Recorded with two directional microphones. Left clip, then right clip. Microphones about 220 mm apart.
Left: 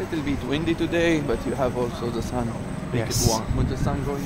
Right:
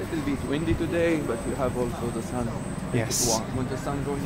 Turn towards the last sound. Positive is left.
turn(degrees=5)  # may be behind; listen again after turning